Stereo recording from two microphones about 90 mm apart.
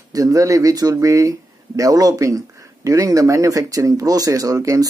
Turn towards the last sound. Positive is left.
turn(degrees=-40)  # may be behind; listen again after turning